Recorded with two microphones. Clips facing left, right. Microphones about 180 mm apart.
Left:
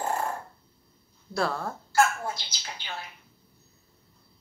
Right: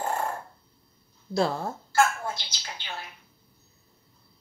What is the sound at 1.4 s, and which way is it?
Speech, 20° right (ahead or behind).